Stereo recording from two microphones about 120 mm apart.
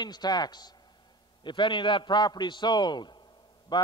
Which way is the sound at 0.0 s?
35° left (ahead or behind).